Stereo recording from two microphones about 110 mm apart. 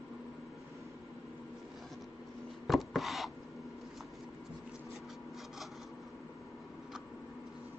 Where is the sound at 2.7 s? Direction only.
Centre (ahead or behind).